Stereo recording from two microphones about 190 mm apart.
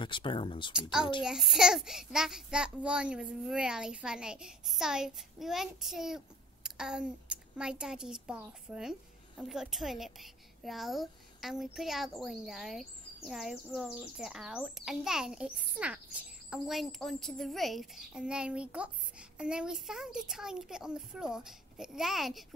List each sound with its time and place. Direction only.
0.0 s speech: 25° left (ahead or behind)
1.2 s a woman's voice: centre (ahead or behind)